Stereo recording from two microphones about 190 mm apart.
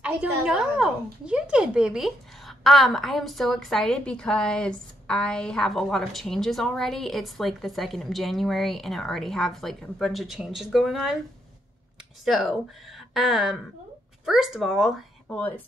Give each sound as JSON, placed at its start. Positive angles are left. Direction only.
{"t": 0.0, "sound": "speech", "side_deg": -5}
{"t": 12.3, "sound": "speech", "side_deg": 0}
{"t": 15.2, "sound": "speech", "side_deg": 10}